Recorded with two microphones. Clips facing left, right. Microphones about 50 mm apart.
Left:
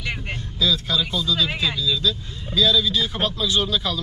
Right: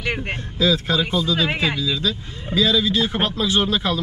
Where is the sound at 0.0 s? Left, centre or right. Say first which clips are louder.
Right 4 dB; right.